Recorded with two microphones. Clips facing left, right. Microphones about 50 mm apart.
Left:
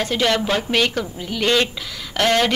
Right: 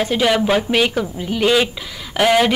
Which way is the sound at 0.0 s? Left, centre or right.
Centre.